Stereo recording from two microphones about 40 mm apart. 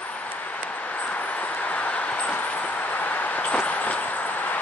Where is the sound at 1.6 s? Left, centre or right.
Left.